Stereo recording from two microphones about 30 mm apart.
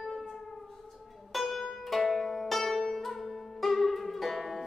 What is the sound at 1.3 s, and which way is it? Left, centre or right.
Music, centre.